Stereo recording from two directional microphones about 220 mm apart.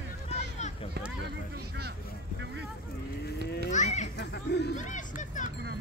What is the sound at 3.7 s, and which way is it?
Children playing, 30° left (ahead or behind).